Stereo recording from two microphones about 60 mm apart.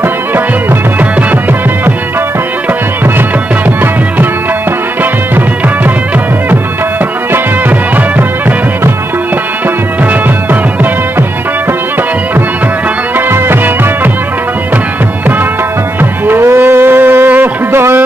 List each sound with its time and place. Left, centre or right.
7.9 s music: right
10.2 s music: right
16.0 s music: right